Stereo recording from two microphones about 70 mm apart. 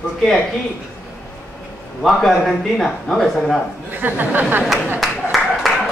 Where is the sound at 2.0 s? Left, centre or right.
Centre.